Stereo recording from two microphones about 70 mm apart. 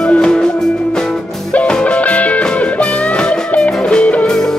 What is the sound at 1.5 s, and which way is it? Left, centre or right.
Music, centre.